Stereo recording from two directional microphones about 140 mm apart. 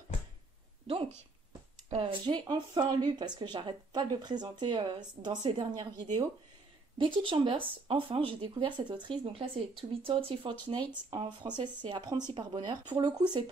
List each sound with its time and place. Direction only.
0.8 s speech: 45° right (ahead or behind)
2.2 s speech: 30° right (ahead or behind)
7.2 s speech: 35° right (ahead or behind)